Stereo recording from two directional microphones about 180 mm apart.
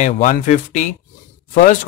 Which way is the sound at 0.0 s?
45° left (ahead or behind).